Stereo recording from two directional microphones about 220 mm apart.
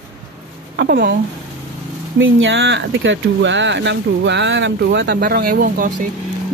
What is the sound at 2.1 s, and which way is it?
Speech, 60° right (ahead or behind).